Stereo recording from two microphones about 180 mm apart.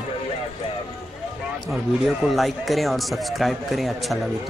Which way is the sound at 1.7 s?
Centre (ahead or behind).